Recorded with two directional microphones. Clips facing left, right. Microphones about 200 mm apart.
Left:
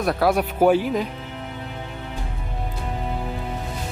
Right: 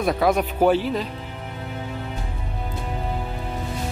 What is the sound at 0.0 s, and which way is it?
Speech, centre (ahead or behind).